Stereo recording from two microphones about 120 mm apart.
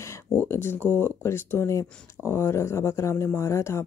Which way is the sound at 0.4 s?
20° left (ahead or behind).